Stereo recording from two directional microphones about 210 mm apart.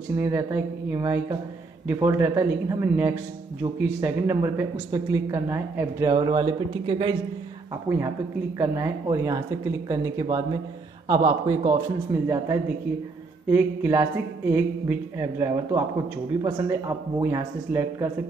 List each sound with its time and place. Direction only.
0.1 s a woman's voice: 15° right (ahead or behind)
7.9 s a woman's voice: 10° right (ahead or behind)